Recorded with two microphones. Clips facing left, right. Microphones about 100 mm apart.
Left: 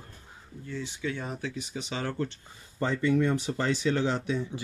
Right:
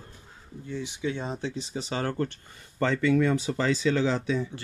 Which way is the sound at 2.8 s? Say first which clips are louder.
Right 3 dB; 90° right.